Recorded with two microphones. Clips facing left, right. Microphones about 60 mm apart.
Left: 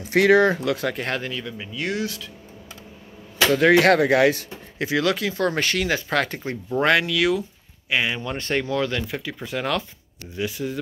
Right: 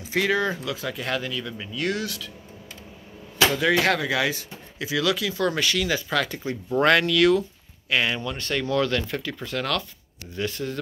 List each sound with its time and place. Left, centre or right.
0.1 s speech: left
1.1 s speech: left
1.4 s speech: centre
3.5 s speech: left
6.8 s speech: centre
8.3 s speech: left
8.6 s speech: centre